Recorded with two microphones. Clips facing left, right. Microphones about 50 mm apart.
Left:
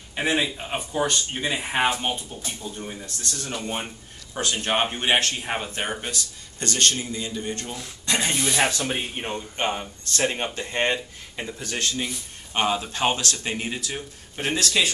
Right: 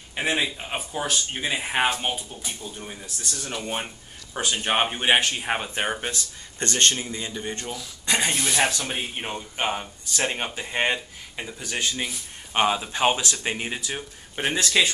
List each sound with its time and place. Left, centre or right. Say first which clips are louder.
0.1 s speech: left 1 dB; centre; by 7.6 s right
8.0 s a sound: right 1 dB; centre
8.3 s speech: left 1 dB; centre; by 14.9 s right